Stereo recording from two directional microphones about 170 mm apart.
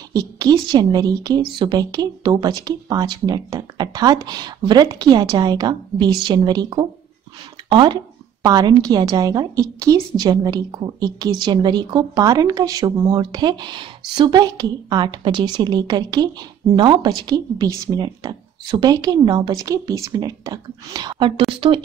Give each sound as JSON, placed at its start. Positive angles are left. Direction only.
{"t": 0.1, "sound": "a woman's voice", "side_deg": -20}